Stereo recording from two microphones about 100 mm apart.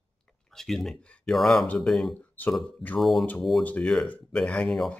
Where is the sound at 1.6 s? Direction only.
15° left (ahead or behind).